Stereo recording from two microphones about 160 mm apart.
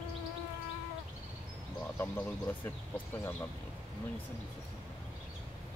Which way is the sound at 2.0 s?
10° left (ahead or behind).